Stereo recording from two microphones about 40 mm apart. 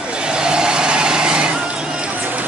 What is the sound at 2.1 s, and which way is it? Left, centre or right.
Run, right.